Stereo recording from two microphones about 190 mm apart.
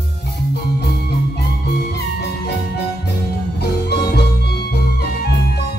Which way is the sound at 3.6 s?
60° left (ahead or behind).